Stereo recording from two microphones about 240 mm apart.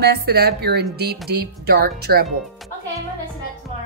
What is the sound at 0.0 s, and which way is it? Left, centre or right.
Speech, right.